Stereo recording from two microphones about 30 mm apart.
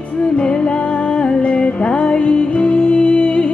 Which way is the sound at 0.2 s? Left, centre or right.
Left.